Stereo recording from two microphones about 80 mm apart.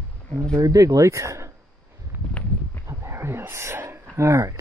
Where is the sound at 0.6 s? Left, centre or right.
Right.